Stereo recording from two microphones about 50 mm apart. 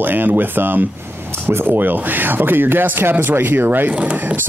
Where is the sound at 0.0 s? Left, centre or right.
Right.